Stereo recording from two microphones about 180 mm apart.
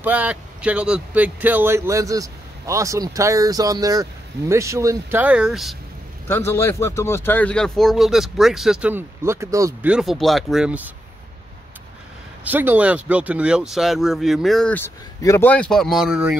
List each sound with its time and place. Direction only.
0.0 s speech: 10° right (ahead or behind)
6.2 s speech: 15° left (ahead or behind); by 9.8 s 15° right (ahead or behind)
9.8 s speech: 5° right (ahead or behind)
12.4 s speech: 10° right (ahead or behind)